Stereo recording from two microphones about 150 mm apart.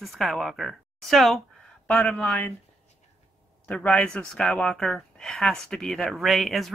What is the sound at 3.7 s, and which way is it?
Speech, 5° left (ahead or behind).